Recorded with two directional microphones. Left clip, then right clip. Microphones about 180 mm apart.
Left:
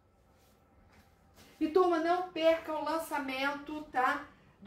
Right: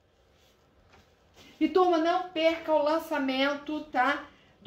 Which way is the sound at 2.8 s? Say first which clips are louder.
Right 7 dB; 35° right (ahead or behind).